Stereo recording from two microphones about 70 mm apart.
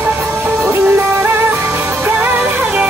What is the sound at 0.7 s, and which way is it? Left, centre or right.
Music, right.